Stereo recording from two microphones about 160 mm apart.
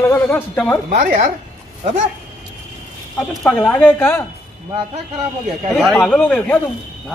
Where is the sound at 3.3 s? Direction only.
5° left (ahead or behind).